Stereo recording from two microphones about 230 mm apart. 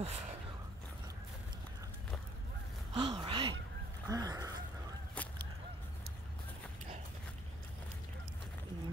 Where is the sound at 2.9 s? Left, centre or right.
Right.